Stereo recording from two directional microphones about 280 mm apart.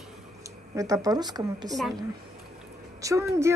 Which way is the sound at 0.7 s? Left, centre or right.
Centre.